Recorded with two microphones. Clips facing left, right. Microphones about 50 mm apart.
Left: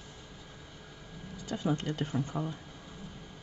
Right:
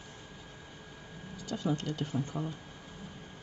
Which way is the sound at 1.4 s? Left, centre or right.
Left.